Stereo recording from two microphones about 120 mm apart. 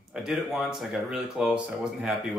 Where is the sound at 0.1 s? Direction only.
5° right (ahead or behind).